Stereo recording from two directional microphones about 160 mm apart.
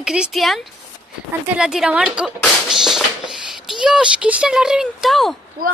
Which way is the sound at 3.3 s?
Centre (ahead or behind).